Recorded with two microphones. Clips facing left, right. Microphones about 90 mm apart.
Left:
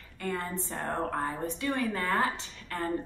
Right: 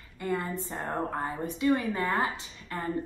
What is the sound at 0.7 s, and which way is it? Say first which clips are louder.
A woman's voice: even; 10° right (ahead or behind).